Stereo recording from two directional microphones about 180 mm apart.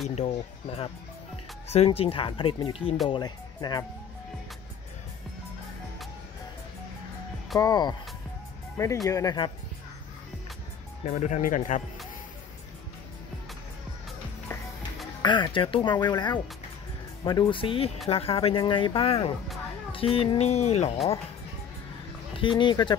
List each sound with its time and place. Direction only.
0.1 s speech: 40° left (ahead or behind); by 3.8 s 20° left (ahead or behind)
7.5 s speech: 20° left (ahead or behind)
9.0 s speech: 20° left (ahead or behind)
11.1 s speech: 40° left (ahead or behind)
14.5 s music: 15° left (ahead or behind)
15.2 s speech: 25° left (ahead or behind)
22.3 s speech: 30° left (ahead or behind)